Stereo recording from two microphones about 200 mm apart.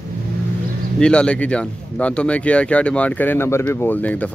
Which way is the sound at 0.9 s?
5° left (ahead or behind).